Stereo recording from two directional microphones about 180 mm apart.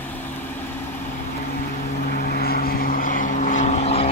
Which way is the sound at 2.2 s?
55° left (ahead or behind).